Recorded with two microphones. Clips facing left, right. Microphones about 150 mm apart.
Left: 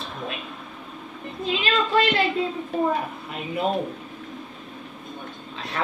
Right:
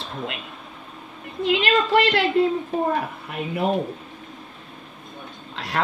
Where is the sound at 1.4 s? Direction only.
75° right (ahead or behind).